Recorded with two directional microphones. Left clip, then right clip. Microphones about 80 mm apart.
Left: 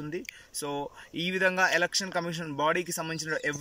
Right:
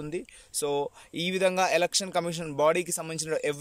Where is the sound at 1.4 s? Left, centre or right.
Right.